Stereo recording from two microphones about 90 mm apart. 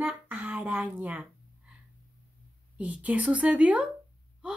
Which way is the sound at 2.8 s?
15° right (ahead or behind).